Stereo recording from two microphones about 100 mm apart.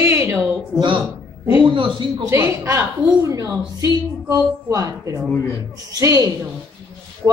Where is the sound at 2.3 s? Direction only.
25° right (ahead or behind).